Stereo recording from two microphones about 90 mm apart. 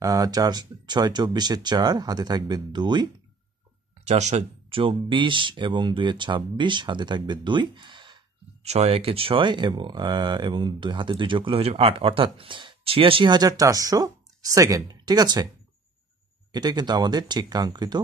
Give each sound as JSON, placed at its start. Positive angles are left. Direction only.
{"t": 0.0, "sound": "speech", "side_deg": -40}
{"t": 4.6, "sound": "speech", "side_deg": -85}
{"t": 9.0, "sound": "speech", "side_deg": -90}
{"t": 13.3, "sound": "speech", "side_deg": -45}
{"t": 16.5, "sound": "speech", "side_deg": -50}